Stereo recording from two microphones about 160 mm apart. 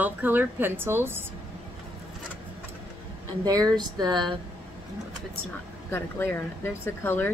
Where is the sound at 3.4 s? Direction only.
25° right (ahead or behind).